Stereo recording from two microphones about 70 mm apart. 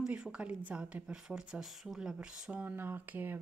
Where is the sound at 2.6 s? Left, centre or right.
Right.